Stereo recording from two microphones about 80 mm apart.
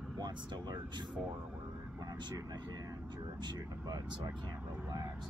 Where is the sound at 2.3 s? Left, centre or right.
Right.